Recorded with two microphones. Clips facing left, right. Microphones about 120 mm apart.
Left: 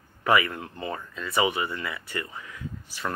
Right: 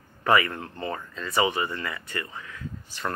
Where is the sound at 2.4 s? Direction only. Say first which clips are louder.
Even; 15° left (ahead or behind).